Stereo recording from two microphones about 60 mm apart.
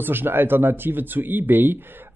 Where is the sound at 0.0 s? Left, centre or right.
Right.